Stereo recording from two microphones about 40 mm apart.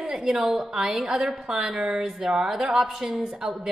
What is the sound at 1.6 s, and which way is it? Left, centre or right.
A woman's voice, centre.